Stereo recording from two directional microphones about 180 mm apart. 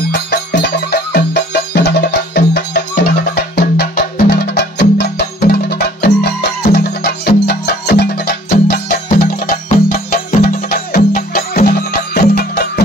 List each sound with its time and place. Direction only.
0.1 s music: 65° left (ahead or behind)
11.0 s music: 45° left (ahead or behind); by 12.8 s 65° left (ahead or behind)